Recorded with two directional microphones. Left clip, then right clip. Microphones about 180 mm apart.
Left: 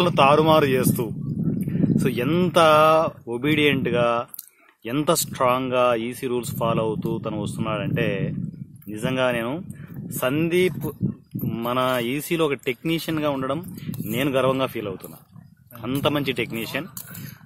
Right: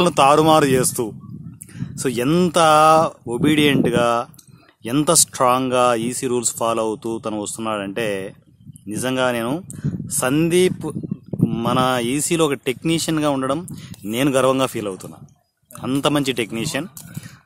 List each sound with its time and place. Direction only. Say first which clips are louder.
0.0 s speech: right 3 dB; 30° right (ahead or behind)